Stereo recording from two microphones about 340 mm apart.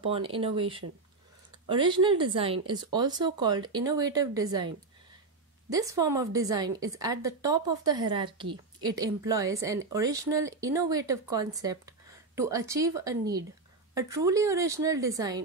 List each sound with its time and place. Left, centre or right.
0.0 s speech: centre
5.7 s speech: centre